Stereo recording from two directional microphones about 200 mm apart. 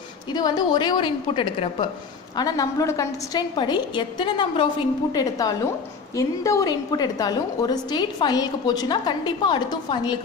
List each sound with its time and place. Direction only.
0.3 s a woman's voice: 20° left (ahead or behind)